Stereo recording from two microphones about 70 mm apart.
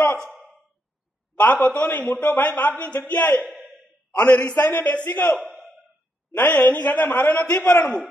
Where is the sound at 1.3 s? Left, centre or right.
Left.